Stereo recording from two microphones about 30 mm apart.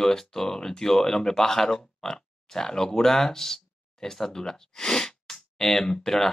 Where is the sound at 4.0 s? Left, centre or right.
Centre.